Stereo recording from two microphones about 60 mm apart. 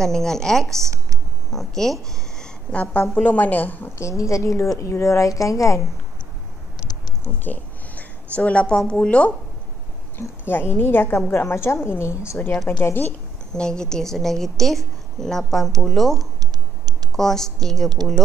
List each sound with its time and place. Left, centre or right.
0.0 s a woman's voice: centre
2.4 s a woman's voice: left
4.0 s a woman's voice: left
7.4 s a sound: left
8.4 s a woman's voice: centre
10.1 s a woman's voice: left
13.5 s a woman's voice: centre